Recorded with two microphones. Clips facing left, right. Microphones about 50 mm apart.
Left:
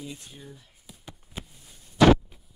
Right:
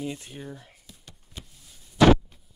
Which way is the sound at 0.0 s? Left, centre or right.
Right.